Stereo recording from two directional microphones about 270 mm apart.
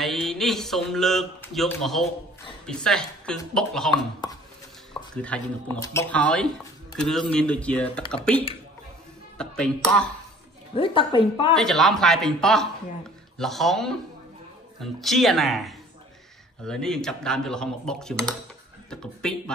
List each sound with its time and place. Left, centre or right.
0.0 s a man's voice: centre
3.9 s speech: centre
5.1 s speech: centre
10.7 s a woman's voice: centre
11.5 s speech: centre